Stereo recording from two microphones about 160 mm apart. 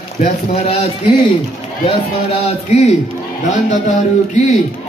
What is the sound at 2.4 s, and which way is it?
A man's voice, 40° left (ahead or behind).